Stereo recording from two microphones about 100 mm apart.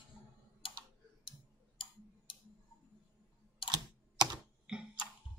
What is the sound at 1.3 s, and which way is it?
Tick-tock, 55° left (ahead or behind).